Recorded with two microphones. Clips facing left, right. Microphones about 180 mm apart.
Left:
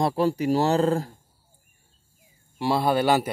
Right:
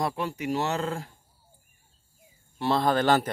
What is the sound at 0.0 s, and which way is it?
Speech, 35° left (ahead or behind).